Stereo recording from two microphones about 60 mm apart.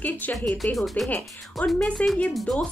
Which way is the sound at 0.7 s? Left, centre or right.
Centre.